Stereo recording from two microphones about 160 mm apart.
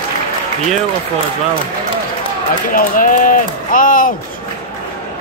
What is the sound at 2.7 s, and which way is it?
Speech, 55° left (ahead or behind).